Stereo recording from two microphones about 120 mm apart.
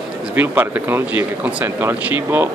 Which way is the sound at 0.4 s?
15° right (ahead or behind).